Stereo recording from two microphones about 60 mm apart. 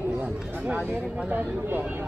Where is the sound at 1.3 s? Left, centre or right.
Right.